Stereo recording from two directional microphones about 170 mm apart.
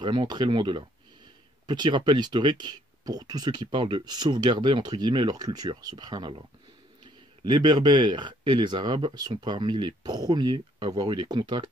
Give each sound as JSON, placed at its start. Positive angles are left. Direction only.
{"t": 0.0, "sound": "speech", "side_deg": -25}
{"t": 7.4, "sound": "speech", "side_deg": -25}